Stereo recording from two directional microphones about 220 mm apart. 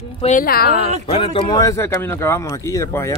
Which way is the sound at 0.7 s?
30° right (ahead or behind).